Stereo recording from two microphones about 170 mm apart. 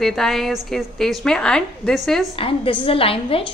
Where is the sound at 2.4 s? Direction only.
30° left (ahead or behind).